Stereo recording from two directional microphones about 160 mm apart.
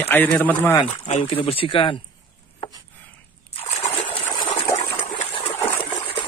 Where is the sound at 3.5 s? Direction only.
40° left (ahead or behind).